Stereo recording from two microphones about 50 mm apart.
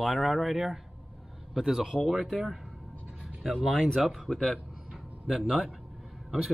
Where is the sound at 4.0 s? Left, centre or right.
Centre.